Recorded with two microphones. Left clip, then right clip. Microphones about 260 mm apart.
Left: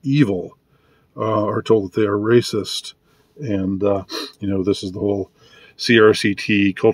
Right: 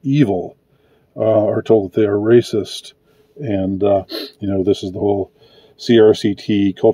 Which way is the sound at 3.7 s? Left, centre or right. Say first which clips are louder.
Right 5 dB; centre.